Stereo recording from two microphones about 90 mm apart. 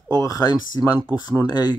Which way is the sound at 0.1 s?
45° left (ahead or behind).